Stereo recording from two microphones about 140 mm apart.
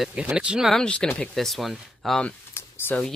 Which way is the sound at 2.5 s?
15° left (ahead or behind).